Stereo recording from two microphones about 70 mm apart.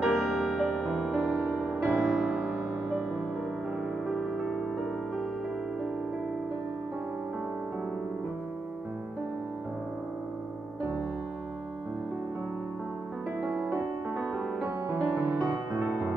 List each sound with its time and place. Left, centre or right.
0.0 s music: centre
1.1 s music: right
2.0 s music: centre
2.2 s music: centre
4.1 s music: centre
15.0 s music: right